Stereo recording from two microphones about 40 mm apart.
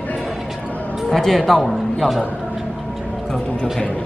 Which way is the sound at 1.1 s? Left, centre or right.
Centre.